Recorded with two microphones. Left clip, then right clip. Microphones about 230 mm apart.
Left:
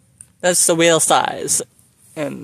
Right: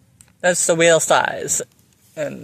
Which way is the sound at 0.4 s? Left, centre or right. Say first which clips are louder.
Even; left.